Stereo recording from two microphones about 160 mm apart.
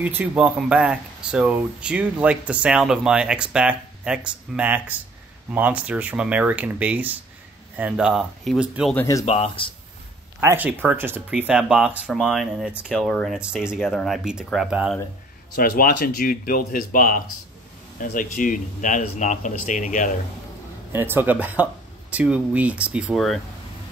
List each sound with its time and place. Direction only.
0.0 s speech: 10° right (ahead or behind)
8.9 s speech: 20° left (ahead or behind)
9.2 s speech: 35° left (ahead or behind)
10.4 s speech: 10° right (ahead or behind)
15.5 s speech: 65° left (ahead or behind)
20.9 s speech: 15° right (ahead or behind)